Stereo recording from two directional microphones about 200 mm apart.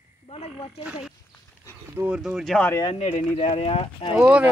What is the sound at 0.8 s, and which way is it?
Speech, 5° right (ahead or behind).